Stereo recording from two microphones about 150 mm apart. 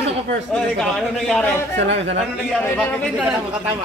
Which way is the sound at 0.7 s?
5° left (ahead or behind).